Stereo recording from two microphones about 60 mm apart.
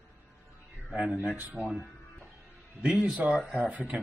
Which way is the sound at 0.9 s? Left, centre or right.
Right.